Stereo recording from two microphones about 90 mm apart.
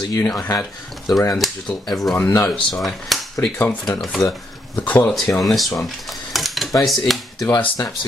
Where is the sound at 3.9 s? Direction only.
Centre (ahead or behind).